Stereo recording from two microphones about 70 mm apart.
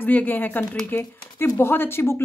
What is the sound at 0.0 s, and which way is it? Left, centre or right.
Speech, left.